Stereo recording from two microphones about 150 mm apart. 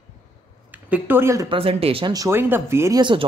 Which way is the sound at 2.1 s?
20° right (ahead or behind).